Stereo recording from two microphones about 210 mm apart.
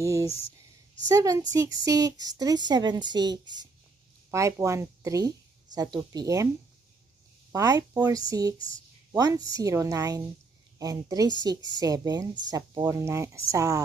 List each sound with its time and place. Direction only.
0.0 s a woman's voice: 15° right (ahead or behind)
7.5 s speech: 15° right (ahead or behind)